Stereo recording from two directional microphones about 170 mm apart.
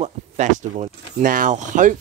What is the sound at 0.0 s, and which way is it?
Speech, 45° right (ahead or behind).